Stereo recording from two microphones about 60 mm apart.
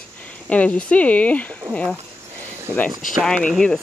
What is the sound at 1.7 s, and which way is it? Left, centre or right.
Speech, right.